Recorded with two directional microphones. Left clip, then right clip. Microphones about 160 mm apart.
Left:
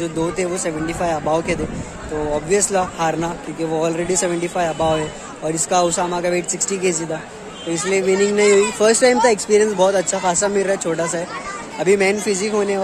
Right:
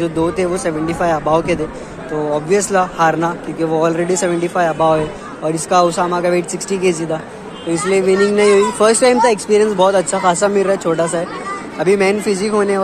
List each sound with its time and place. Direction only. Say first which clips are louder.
0.0 s a man's voice: right 5 dB; 15° left (ahead or behind)